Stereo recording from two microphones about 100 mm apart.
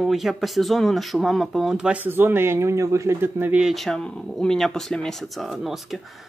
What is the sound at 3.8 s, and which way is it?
Speech, 5° left (ahead or behind).